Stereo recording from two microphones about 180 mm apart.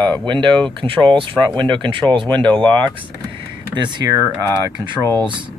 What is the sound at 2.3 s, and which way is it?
Speech, 10° left (ahead or behind).